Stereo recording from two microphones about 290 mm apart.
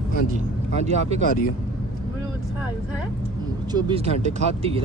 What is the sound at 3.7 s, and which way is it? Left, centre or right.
Speech, centre.